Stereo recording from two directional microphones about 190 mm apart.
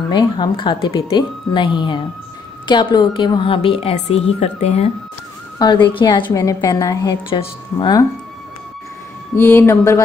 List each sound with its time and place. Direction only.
0.1 s a woman's voice: 25° left (ahead or behind)
5.6 s a woman's voice: 25° left (ahead or behind)
9.3 s speech: 10° left (ahead or behind)